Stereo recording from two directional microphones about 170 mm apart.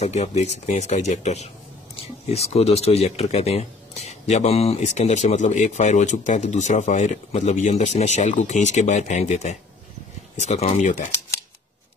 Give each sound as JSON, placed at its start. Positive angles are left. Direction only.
{"t": 0.0, "sound": "speech", "side_deg": 40}